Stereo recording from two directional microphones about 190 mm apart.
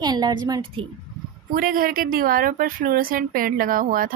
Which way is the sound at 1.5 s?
50° right (ahead or behind).